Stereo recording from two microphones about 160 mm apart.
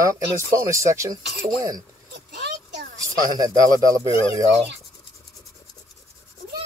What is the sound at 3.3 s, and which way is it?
Speech, 25° right (ahead or behind).